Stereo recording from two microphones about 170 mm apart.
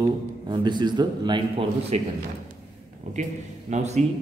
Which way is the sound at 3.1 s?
45° right (ahead or behind).